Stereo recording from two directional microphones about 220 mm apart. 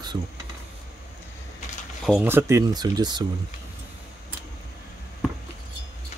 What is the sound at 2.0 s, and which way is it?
Speech, 10° right (ahead or behind).